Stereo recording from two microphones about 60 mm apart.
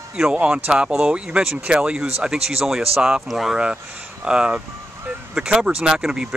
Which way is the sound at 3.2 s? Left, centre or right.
Centre.